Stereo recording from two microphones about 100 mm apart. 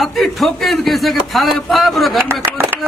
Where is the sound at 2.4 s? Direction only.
25° right (ahead or behind).